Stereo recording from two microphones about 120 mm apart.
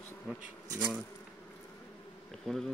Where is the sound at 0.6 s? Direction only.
30° right (ahead or behind).